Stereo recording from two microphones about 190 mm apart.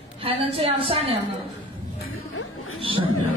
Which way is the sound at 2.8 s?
25° right (ahead or behind).